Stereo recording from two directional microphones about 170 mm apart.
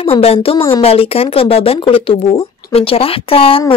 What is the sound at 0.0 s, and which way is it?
Speech, 35° left (ahead or behind).